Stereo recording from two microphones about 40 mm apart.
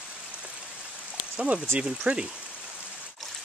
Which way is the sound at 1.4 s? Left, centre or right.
Right.